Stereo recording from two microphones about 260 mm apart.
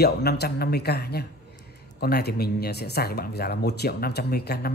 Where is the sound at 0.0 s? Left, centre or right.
Left.